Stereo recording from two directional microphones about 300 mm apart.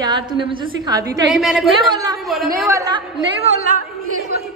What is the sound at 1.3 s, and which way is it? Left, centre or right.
Speech, centre.